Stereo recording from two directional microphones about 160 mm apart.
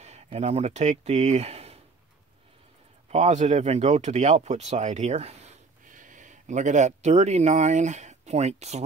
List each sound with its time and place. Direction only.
0.0 s speech: 45° right (ahead or behind)
3.1 s speech: 45° right (ahead or behind)